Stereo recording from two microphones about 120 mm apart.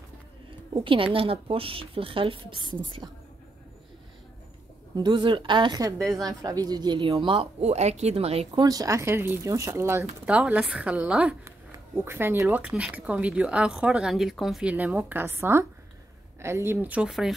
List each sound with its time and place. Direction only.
0.5 s speech: 45° right (ahead or behind)
4.9 s a woman's voice: 40° right (ahead or behind)
7.1 s speech: 50° right (ahead or behind)
7.6 s speech: 70° right (ahead or behind)
8.5 s speech: 30° right (ahead or behind)
10.2 s speech: 10° right (ahead or behind)
14.7 s speech: 15° right (ahead or behind)